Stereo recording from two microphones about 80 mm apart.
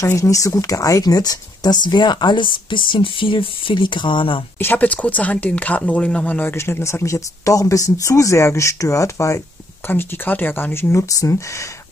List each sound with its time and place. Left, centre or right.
0.0 s speech: left
4.6 s speech: left
6.5 s speech: left
9.8 s speech: left